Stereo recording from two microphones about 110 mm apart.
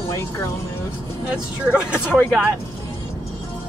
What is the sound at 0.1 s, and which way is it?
Speech, 30° left (ahead or behind).